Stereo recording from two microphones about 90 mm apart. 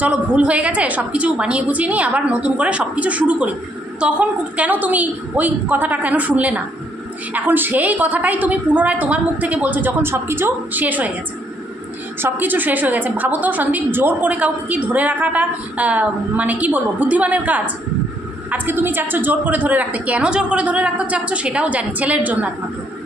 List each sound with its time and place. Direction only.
0.0 s a woman's voice: 15° right (ahead or behind)
12.2 s a woman's voice: 20° right (ahead or behind)